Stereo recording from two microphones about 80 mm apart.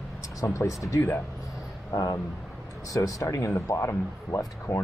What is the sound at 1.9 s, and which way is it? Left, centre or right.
Speech, left.